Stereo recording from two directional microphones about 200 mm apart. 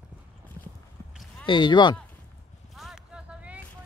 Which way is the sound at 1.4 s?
25° left (ahead or behind).